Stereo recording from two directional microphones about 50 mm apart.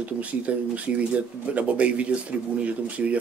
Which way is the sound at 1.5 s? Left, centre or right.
Right.